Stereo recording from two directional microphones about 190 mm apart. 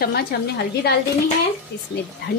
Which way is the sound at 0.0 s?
55° left (ahead or behind).